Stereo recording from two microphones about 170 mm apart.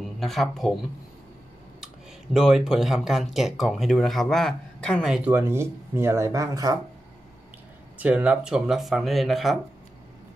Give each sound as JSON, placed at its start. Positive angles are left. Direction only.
{"t": 0.2, "sound": "speech", "side_deg": 0}
{"t": 2.3, "sound": "speech", "side_deg": -5}
{"t": 5.3, "sound": "speech", "side_deg": -15}
{"t": 8.0, "sound": "speech", "side_deg": -10}